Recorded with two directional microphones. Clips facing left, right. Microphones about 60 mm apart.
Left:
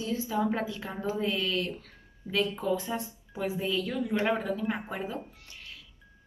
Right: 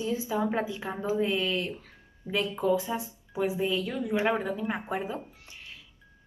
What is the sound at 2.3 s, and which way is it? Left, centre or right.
A woman's voice, centre.